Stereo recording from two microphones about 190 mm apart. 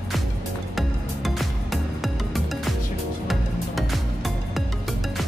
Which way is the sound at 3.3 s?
Centre (ahead or behind).